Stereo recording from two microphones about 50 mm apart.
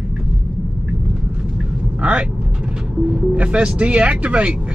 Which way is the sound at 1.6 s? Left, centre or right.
Right.